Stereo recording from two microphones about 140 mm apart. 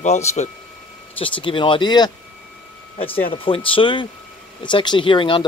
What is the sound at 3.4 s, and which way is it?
Speech, 40° left (ahead or behind).